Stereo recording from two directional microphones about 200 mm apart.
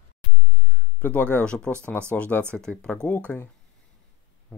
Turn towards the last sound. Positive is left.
turn(degrees=5)  # may be behind; listen again after turning